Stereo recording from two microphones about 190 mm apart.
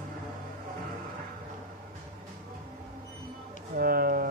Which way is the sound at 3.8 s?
50° right (ahead or behind).